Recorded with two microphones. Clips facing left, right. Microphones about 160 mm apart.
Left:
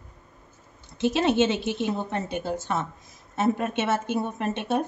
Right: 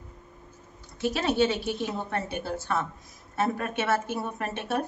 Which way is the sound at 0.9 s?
25° left (ahead or behind).